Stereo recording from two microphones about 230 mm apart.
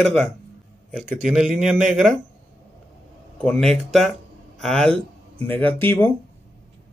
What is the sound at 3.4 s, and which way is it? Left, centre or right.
Speech, centre.